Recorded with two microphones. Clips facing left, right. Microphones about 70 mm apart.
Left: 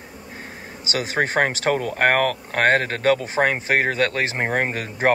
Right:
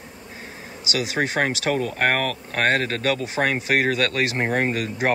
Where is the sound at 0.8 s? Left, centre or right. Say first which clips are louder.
Left 1 dB; left.